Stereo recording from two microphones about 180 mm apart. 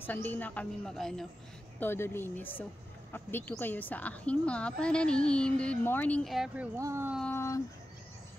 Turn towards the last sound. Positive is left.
turn(degrees=15)  # may be behind; listen again after turning